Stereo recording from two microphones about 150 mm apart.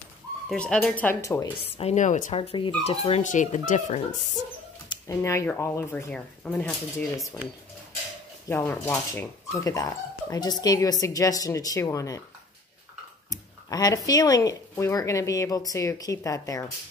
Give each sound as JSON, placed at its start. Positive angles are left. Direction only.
{"t": 0.5, "sound": "speech", "side_deg": 5}
{"t": 1.2, "sound": "speech", "side_deg": 20}
{"t": 1.6, "sound": "speech", "side_deg": 45}
{"t": 2.3, "sound": "speech", "side_deg": 35}
{"t": 3.3, "sound": "speech", "side_deg": 55}
{"t": 4.8, "sound": "speech", "side_deg": 20}
{"t": 8.5, "sound": "speech", "side_deg": 20}
{"t": 13.3, "sound": "speech", "side_deg": 25}